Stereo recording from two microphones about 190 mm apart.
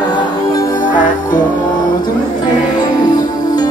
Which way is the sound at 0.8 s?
45° left (ahead or behind).